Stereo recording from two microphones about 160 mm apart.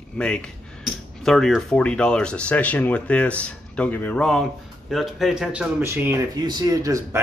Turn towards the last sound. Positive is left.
turn(degrees=-20)  # may be behind; listen again after turning